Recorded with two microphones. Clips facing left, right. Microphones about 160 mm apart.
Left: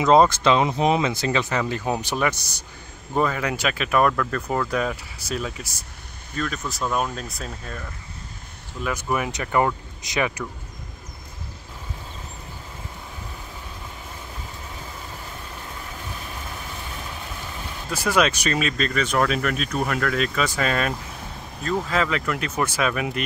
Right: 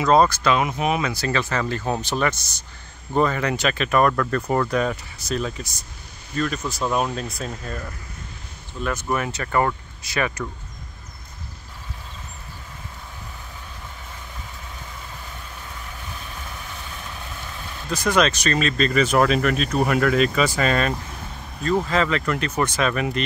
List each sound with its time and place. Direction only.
0.0 s speech: 20° left (ahead or behind); by 7.8 s centre (ahead or behind)
8.8 s speech: 10° left (ahead or behind)
17.9 s speech: 10° left (ahead or behind)
18.9 s speech: 5° right (ahead or behind)